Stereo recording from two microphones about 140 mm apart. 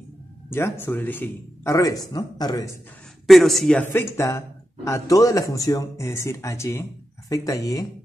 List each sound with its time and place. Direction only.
0.5 s speech: 15° left (ahead or behind)
3.3 s speech: centre (ahead or behind)
3.8 s speech: 15° left (ahead or behind)